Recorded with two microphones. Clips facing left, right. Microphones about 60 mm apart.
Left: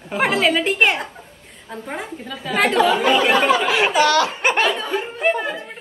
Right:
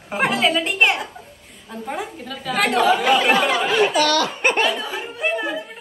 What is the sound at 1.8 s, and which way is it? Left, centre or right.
A woman's voice, left.